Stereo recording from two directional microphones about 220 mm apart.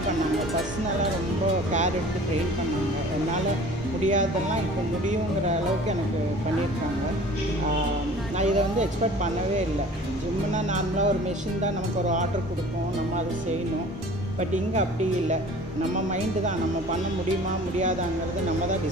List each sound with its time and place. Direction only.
4.1 s speech: 35° right (ahead or behind)
8.4 s speech: 30° right (ahead or behind)
10.5 s speech: 30° right (ahead or behind)
14.5 s speech: 30° right (ahead or behind)